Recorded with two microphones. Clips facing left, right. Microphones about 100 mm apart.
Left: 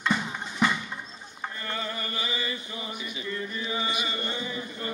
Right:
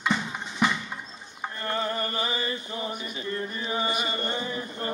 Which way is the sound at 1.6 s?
40° right (ahead or behind).